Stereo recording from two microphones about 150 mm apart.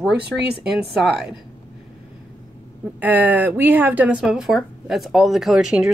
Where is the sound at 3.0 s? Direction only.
10° right (ahead or behind).